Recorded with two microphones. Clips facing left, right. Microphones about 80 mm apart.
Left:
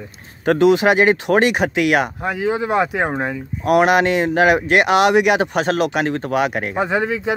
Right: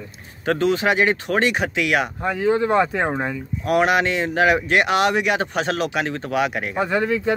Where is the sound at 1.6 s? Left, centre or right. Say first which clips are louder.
Left 5 dB; left.